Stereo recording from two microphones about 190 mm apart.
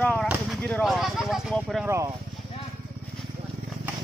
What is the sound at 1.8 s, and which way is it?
Speech, 15° right (ahead or behind).